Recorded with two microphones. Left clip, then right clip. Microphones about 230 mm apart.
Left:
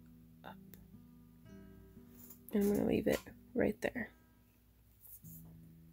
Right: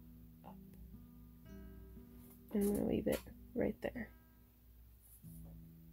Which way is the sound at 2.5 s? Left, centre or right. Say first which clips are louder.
Left 4 dB; centre.